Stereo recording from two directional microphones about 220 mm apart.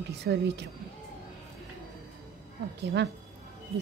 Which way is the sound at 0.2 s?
50° right (ahead or behind).